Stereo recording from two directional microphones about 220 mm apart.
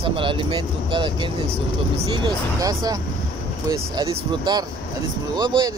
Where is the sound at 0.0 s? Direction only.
25° right (ahead or behind).